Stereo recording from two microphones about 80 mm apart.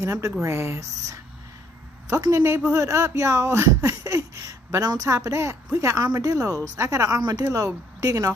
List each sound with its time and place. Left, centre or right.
0.0 s speech: right